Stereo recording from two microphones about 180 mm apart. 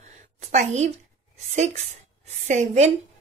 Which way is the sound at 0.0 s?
40° right (ahead or behind).